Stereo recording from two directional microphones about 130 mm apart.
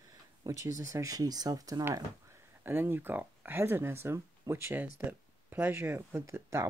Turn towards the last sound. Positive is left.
turn(degrees=-20)  # may be behind; listen again after turning